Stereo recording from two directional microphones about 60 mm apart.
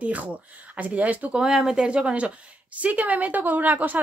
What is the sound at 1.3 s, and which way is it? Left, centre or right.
A woman's voice, centre.